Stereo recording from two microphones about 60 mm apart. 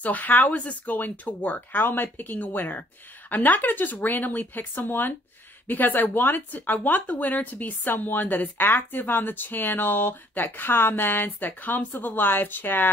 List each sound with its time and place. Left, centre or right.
0.0 s a woman's voice: left